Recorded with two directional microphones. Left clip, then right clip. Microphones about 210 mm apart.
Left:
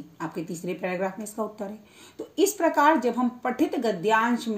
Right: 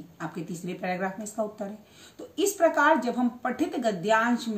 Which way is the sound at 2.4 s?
15° right (ahead or behind).